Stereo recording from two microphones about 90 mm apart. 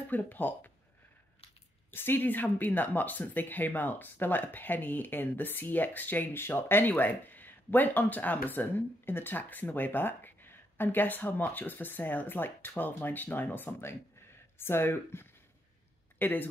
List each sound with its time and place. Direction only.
0.1 s speech: 20° left (ahead or behind)
1.9 s speech: 25° left (ahead or behind)